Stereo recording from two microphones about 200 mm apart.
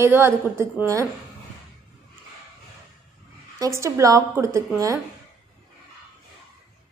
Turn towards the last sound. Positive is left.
turn(degrees=-15)  # may be behind; listen again after turning